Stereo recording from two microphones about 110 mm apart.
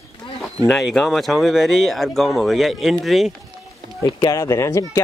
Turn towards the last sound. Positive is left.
turn(degrees=25)  # may be behind; listen again after turning